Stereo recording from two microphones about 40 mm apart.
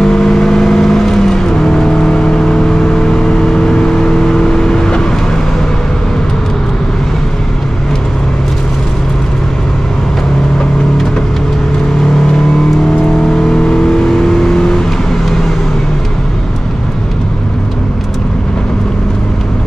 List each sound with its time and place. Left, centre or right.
0.0 s vehicle: centre
13.3 s vehicle: centre